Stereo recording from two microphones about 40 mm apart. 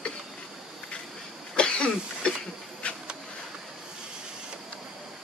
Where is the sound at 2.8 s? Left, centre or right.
Left.